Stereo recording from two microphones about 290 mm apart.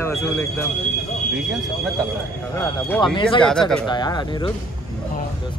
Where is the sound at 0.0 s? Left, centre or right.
Centre.